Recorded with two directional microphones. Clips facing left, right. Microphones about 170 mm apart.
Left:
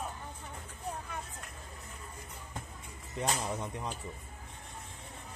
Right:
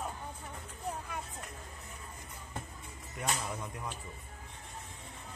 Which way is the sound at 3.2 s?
30° left (ahead or behind).